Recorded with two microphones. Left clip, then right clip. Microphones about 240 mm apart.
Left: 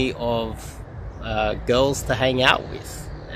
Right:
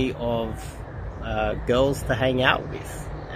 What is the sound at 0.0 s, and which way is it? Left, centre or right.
Speech, centre.